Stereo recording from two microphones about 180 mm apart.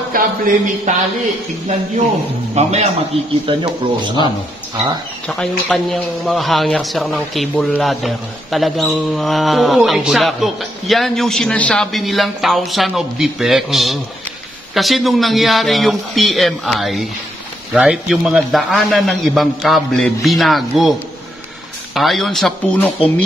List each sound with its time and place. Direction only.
0.1 s a sound: 50° right (ahead or behind)
2.5 s a man's voice: 35° right (ahead or behind)
3.4 s speech: 25° right (ahead or behind)
5.3 s speech: centre (ahead or behind)
21.9 s speech: centre (ahead or behind)